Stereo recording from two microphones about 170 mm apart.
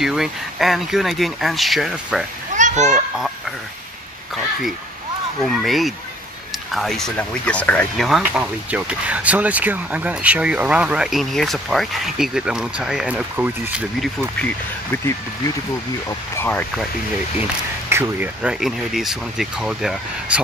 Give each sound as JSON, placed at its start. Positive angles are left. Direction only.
{"t": 0.0, "sound": "speech", "side_deg": 0}
{"t": 2.5, "sound": "children playing", "side_deg": -45}
{"t": 5.4, "sound": "speech", "side_deg": 0}
{"t": 8.2, "sound": "speech", "side_deg": -10}
{"t": 16.1, "sound": "speech", "side_deg": 15}
{"t": 17.4, "sound": "speech", "side_deg": -10}